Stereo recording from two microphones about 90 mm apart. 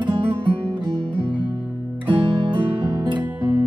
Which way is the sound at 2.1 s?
60° right (ahead or behind).